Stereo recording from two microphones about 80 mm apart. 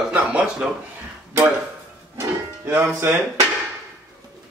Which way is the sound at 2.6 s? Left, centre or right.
Right.